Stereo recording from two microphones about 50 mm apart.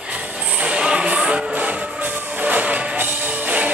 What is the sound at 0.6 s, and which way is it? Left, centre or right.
Music, centre.